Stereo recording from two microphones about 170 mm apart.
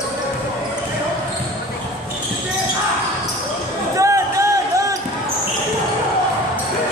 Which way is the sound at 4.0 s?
20° right (ahead or behind).